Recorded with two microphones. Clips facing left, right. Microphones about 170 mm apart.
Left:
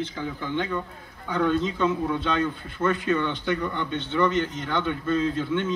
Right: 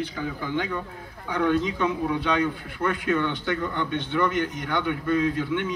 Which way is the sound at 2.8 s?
20° left (ahead or behind).